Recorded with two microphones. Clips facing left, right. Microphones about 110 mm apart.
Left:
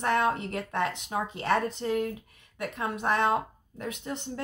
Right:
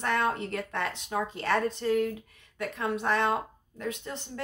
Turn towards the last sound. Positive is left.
turn(degrees=20)  # may be behind; listen again after turning